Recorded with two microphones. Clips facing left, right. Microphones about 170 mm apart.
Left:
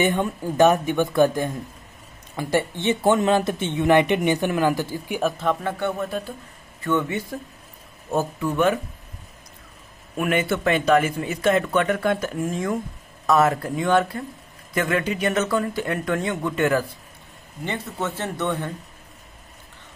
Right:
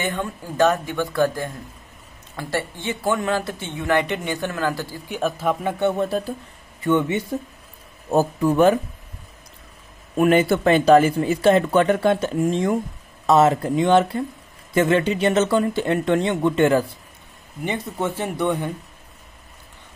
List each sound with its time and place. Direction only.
0.0 s speech: 20° left (ahead or behind)
5.2 s speech: 10° right (ahead or behind)
6.0 s speech: 35° right (ahead or behind)
6.8 s speech: 20° right (ahead or behind)
8.1 s speech: 35° right (ahead or behind)
10.1 s speech: 30° right (ahead or behind)
17.6 s speech: 15° right (ahead or behind)